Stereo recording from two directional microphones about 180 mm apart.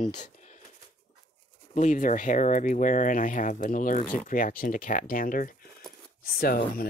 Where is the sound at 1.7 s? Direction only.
45° left (ahead or behind).